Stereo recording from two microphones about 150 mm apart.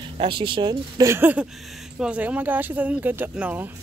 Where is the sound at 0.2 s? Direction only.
35° right (ahead or behind); by 3.7 s 10° right (ahead or behind).